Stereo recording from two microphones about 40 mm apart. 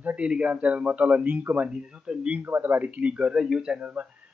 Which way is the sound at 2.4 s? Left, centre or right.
Right.